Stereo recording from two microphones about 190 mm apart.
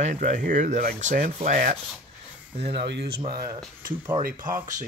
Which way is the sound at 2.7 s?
65° right (ahead or behind).